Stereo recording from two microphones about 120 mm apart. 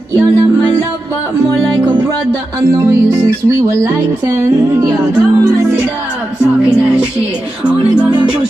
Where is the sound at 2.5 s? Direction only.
25° right (ahead or behind).